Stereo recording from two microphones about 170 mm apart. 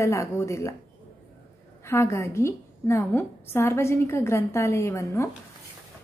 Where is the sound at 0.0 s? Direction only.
15° left (ahead or behind).